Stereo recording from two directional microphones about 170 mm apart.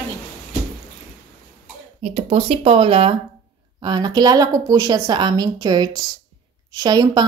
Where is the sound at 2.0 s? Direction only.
40° right (ahead or behind).